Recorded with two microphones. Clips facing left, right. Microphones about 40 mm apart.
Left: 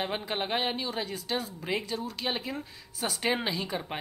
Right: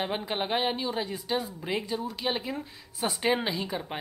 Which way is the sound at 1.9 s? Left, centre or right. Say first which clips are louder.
Right 2 dB; centre.